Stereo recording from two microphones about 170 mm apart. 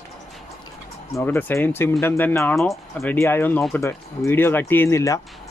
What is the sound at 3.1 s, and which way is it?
Speech, 15° left (ahead or behind).